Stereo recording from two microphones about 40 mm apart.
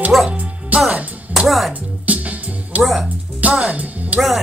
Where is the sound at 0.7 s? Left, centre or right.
Right.